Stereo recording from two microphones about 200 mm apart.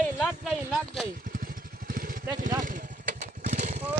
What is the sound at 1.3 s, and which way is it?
Vehicle, 45° right (ahead or behind).